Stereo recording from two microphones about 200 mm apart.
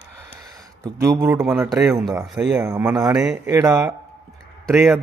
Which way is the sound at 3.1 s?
5° right (ahead or behind).